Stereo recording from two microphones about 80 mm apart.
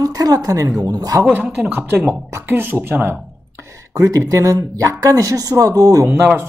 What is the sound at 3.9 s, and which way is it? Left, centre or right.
Speech, right.